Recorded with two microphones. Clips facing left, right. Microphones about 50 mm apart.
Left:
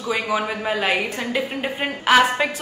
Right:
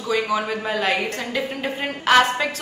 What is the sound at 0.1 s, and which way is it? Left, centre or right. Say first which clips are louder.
A woman's voice: right 1 dB; centre.